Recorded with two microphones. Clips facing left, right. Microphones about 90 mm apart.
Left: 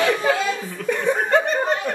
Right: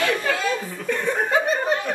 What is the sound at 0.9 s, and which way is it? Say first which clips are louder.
Chuckle: left 2 dB; 15° left (ahead or behind).